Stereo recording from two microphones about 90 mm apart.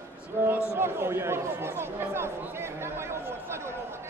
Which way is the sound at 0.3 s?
25° right (ahead or behind).